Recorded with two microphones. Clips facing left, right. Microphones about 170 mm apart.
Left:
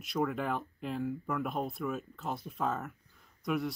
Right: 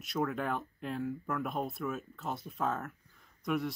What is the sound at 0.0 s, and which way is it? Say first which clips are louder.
Speech: left 1 dB; centre (ahead or behind).